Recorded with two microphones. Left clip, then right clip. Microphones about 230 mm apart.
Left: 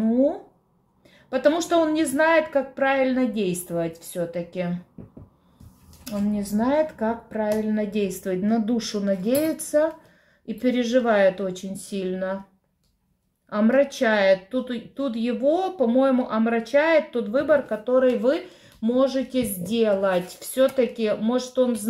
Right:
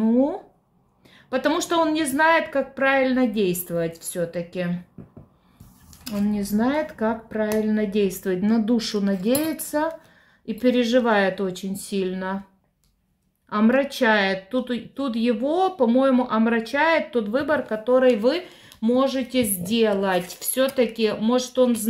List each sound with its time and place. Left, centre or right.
0.0 s a sound: right
1.3 s speech: right
6.0 s speech: right
13.5 s speech: right